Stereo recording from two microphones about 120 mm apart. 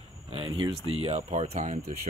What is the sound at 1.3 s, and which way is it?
Speech, 75° right (ahead or behind).